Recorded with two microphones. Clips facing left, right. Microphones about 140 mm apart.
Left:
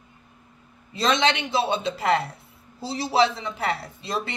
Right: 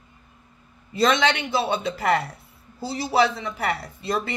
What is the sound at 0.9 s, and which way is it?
Speech, 25° left (ahead or behind).